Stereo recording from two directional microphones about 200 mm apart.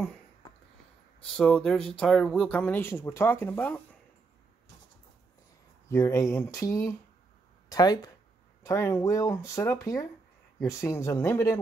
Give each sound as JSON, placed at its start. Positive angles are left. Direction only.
{"t": 1.2, "sound": "speech", "side_deg": 5}
{"t": 5.9, "sound": "speech", "side_deg": 15}